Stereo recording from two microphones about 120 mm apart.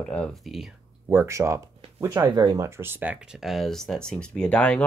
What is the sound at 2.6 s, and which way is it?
Speech, 20° right (ahead or behind).